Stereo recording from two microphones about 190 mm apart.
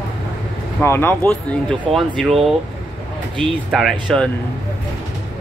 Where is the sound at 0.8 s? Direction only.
10° left (ahead or behind).